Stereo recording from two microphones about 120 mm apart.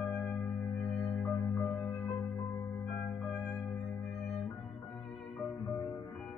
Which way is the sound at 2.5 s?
20° left (ahead or behind).